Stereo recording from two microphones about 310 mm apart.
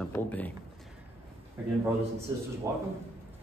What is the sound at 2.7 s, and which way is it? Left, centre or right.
Speech, centre.